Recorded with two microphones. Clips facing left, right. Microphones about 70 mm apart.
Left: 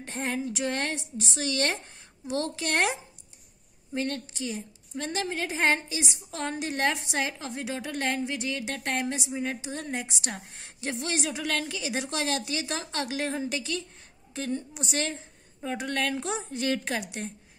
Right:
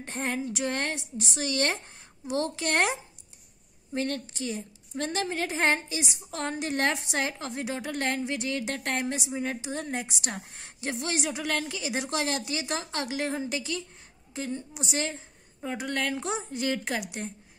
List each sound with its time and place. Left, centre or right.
0.0 s a woman's voice: right